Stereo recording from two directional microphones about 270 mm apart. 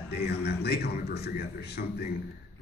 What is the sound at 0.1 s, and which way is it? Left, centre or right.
A man's voice, left.